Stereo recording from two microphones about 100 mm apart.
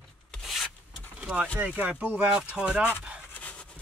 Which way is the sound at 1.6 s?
15° right (ahead or behind).